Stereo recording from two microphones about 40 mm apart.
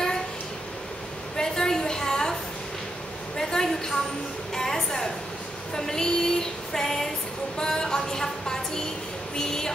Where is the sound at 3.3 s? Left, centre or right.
Centre.